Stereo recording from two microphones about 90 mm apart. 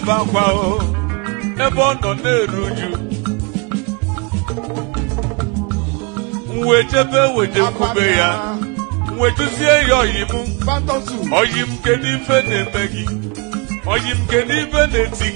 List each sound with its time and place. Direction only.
0.0 s music: 10° right (ahead or behind)
6.5 s music: 10° right (ahead or behind)